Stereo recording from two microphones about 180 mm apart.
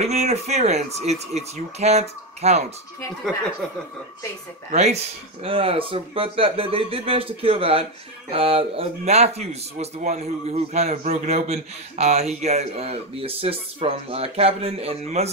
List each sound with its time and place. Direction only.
0.0 s speech: 40° right (ahead or behind)
4.6 s speech: 40° right (ahead or behind)